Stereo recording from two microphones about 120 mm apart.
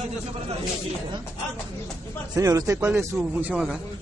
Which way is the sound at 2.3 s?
30° right (ahead or behind).